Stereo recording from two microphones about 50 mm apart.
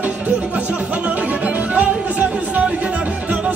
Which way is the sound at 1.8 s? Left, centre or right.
Right.